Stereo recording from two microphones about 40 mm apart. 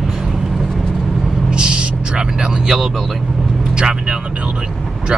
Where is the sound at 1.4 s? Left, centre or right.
Right.